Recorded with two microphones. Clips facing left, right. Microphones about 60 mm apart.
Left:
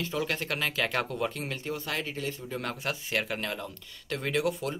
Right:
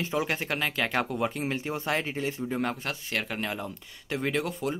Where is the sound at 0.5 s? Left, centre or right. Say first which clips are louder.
Right 1 dB; centre; by 2.6 s right.